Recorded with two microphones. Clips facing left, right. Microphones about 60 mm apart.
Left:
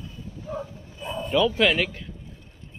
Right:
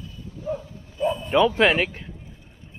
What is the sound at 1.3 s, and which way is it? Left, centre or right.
Speech, right.